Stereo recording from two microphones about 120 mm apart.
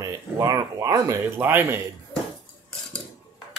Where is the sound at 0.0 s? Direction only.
30° right (ahead or behind).